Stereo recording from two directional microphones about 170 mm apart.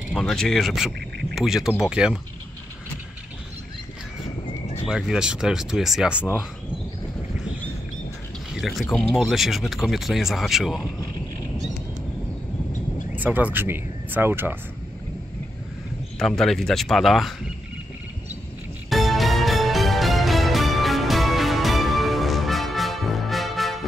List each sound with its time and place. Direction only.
0.1 s speech: 5° left (ahead or behind)
4.5 s bird: 35° left (ahead or behind)
4.8 s speech: centre (ahead or behind)
8.5 s speech: centre (ahead or behind)
13.1 s speech: 10° right (ahead or behind)
16.2 s speech: centre (ahead or behind)
18.9 s music: centre (ahead or behind)